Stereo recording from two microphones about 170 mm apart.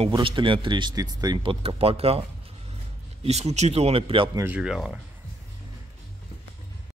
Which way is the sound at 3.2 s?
40° right (ahead or behind).